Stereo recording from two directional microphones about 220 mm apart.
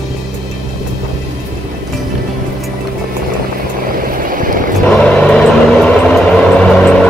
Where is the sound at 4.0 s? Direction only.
40° right (ahead or behind).